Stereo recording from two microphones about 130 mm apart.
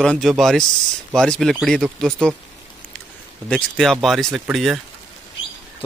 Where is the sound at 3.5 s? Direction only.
5° left (ahead or behind).